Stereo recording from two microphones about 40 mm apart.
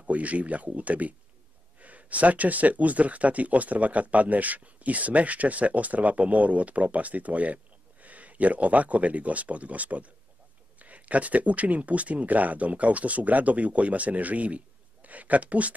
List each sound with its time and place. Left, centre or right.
0.0 s speech: right